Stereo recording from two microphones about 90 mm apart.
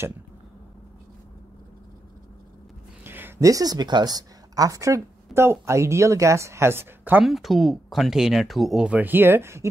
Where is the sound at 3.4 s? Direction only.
40° right (ahead or behind); by 7.2 s 25° right (ahead or behind).